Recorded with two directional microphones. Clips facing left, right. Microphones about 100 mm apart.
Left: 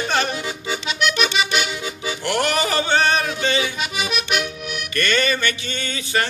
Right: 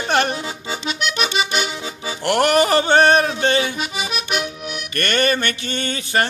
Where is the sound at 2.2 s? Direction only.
55° right (ahead or behind).